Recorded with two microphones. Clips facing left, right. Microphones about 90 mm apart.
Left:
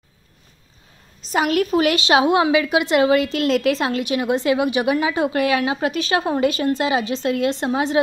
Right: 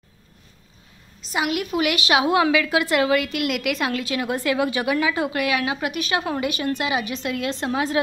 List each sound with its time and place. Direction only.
1.3 s a woman's voice: 40° left (ahead or behind); by 8.0 s 25° left (ahead or behind)